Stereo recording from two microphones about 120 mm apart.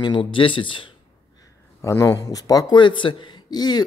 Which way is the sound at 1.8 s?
25° left (ahead or behind).